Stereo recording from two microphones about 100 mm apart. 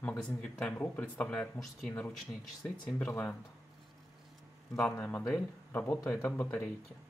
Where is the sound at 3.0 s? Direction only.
15° left (ahead or behind).